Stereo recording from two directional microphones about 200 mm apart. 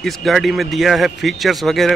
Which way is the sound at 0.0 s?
Centre (ahead or behind).